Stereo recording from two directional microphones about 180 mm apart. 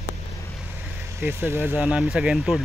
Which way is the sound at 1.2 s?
15° right (ahead or behind).